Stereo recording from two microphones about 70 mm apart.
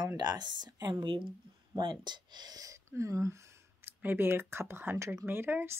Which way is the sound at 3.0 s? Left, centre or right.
Right.